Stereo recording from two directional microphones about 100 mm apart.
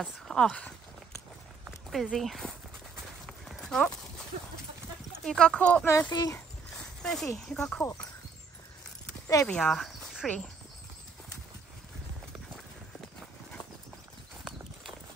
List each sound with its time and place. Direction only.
0.0 s speech: 5° left (ahead or behind)
1.9 s speech: centre (ahead or behind)
3.3 s clip-clop: 5° left (ahead or behind)
5.2 s speech: 10° left (ahead or behind)
6.0 s a child's voice: 45° left (ahead or behind)
7.0 s speech: 5° left (ahead or behind)
7.8 s speech: 35° left (ahead or behind)
9.5 s speech: 5° left (ahead or behind)